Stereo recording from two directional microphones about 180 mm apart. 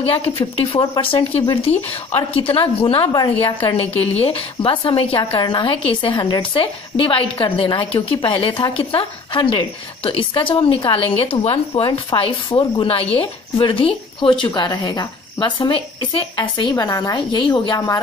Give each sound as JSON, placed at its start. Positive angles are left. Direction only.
{"t": 0.0, "sound": "a woman's voice", "side_deg": 30}